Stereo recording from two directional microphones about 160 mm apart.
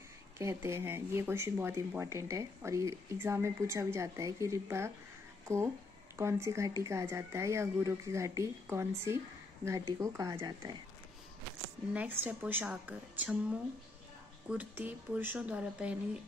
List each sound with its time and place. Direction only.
0.4 s speech: 15° right (ahead or behind)
6.1 s speech: 15° right (ahead or behind)
11.9 s speech: 10° right (ahead or behind)